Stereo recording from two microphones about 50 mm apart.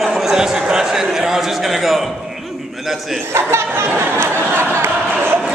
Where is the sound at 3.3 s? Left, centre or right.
Right.